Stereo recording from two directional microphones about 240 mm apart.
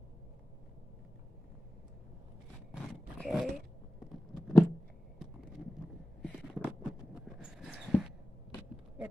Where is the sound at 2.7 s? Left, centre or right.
Centre.